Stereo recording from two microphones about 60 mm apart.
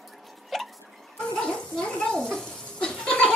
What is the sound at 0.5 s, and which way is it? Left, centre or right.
Hiccup, centre.